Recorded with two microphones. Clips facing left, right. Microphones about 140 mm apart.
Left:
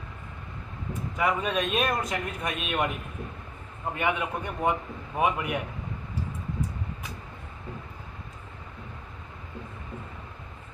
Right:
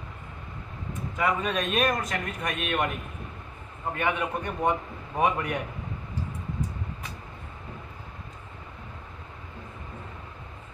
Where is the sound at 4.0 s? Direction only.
15° left (ahead or behind).